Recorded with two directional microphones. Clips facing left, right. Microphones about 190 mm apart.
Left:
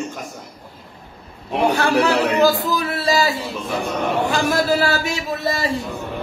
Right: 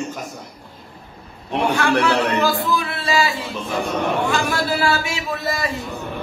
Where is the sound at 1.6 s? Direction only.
35° left (ahead or behind).